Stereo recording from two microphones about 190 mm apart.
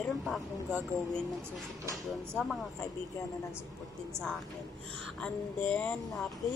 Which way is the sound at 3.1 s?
15° left (ahead or behind).